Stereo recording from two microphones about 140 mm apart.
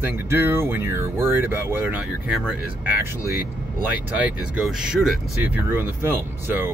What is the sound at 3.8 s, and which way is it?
Speech, 10° right (ahead or behind).